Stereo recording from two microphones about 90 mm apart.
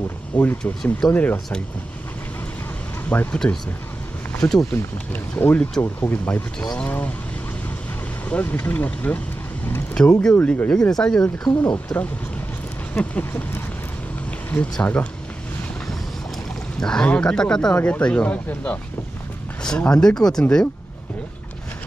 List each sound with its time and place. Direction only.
0.4 s speech: 20° left (ahead or behind)
3.1 s speech: 20° left (ahead or behind)
4.3 s speech: 5° left (ahead or behind)
5.4 s speech: 20° left (ahead or behind)
8.3 s speech: 15° left (ahead or behind)
14.6 s speech: 20° left (ahead or behind)
16.8 s speech: 10° left (ahead or behind)
19.9 s speech: 10° left (ahead or behind)